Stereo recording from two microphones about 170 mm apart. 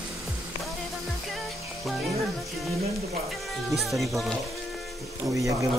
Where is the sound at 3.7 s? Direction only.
Centre (ahead or behind).